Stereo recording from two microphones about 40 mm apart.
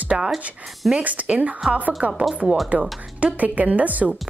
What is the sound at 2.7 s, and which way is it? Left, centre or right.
Speech, right.